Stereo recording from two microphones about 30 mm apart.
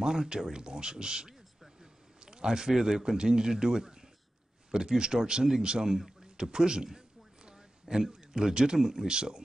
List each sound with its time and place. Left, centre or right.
0.0 s speech: right
2.1 s a sound: right
2.7 s speech: centre
8.1 s a man's voice: right